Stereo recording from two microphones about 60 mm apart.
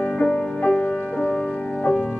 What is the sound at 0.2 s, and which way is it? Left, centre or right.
Music, left.